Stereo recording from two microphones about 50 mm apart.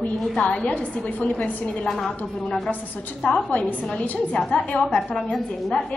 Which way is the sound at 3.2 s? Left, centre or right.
Left.